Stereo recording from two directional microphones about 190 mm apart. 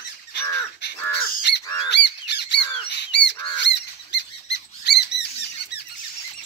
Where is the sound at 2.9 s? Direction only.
65° left (ahead or behind).